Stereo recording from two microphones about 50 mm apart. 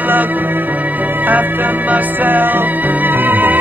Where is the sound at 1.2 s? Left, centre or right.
Right.